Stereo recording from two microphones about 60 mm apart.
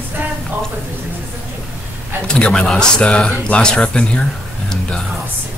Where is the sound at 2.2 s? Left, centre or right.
Centre.